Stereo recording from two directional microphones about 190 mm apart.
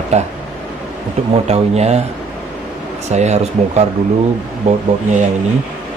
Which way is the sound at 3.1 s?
35° right (ahead or behind).